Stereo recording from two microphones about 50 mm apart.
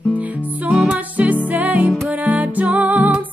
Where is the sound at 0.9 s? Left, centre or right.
Right.